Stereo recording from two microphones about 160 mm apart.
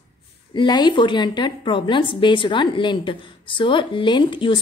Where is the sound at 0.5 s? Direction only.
30° left (ahead or behind).